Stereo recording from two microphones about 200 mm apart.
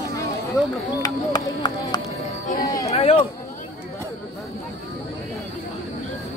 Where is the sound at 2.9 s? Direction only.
30° left (ahead or behind).